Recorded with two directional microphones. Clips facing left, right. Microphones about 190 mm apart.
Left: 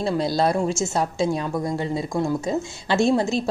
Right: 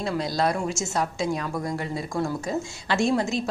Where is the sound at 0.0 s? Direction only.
30° left (ahead or behind).